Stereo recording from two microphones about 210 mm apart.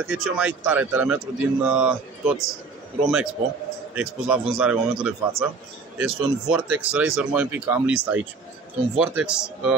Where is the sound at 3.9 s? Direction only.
5° right (ahead or behind).